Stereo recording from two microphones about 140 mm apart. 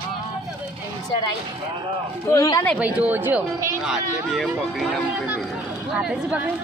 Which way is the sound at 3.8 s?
Centre (ahead or behind).